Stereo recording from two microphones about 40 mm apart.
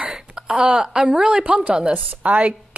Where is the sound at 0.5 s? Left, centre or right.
Right.